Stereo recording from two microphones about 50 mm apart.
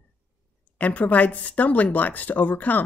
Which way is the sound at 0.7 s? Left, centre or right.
Left.